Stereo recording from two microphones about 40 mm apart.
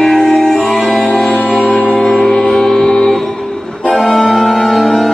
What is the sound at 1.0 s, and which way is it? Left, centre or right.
Music, left.